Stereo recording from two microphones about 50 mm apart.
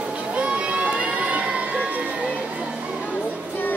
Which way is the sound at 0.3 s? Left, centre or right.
Right.